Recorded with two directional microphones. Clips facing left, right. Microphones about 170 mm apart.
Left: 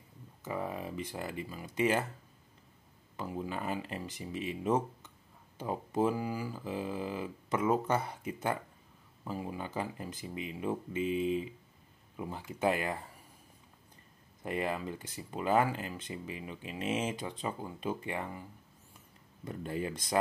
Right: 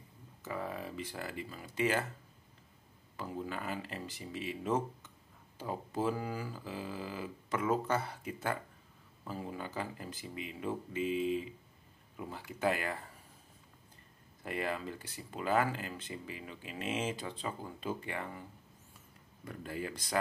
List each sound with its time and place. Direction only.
0.4 s speech: 20° left (ahead or behind)
3.2 s speech: 20° left (ahead or behind)
14.4 s speech: 20° left (ahead or behind)
19.4 s speech: 25° left (ahead or behind)